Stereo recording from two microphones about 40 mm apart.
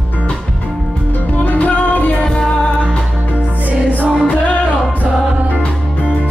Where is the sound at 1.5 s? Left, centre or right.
Left.